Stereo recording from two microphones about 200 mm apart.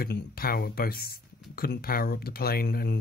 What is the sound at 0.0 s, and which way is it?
Speech, 50° left (ahead or behind).